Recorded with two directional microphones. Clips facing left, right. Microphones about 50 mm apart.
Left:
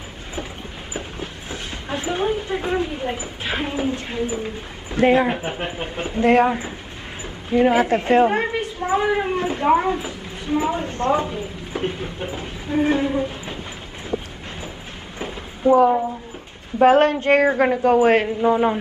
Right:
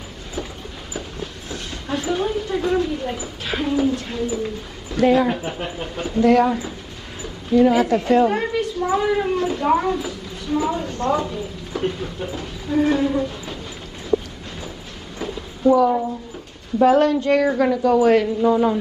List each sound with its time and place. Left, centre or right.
1.5 s speech: left
15.1 s a sound: left
16.8 s a woman's voice: left